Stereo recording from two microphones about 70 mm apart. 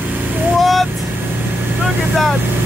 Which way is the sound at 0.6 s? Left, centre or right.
Centre.